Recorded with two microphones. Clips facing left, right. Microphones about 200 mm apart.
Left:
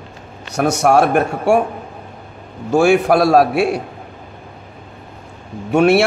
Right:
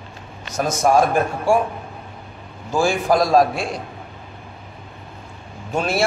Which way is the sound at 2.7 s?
65° left (ahead or behind).